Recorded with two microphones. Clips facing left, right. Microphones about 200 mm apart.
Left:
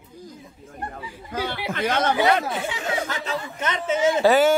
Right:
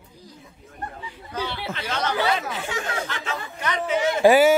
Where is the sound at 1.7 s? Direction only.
55° left (ahead or behind).